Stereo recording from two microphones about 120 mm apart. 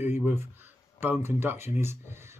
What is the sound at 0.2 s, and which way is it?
Speech, 20° right (ahead or behind).